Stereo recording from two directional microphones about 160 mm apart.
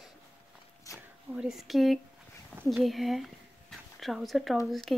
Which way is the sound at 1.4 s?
Centre (ahead or behind).